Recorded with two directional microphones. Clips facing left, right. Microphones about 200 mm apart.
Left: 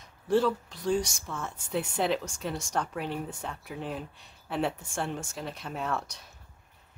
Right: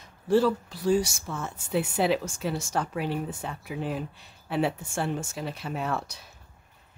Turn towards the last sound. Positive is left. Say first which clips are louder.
# right 2 dB
turn(degrees=-5)  # may be behind; listen again after turning